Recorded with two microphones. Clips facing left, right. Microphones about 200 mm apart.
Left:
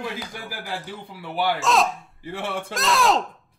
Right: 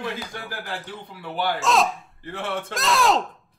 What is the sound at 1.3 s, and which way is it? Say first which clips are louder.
Speech: left 2 dB; 10° left (ahead or behind).